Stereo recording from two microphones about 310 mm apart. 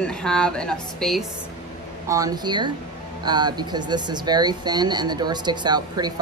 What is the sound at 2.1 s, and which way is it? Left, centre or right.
Speech, centre.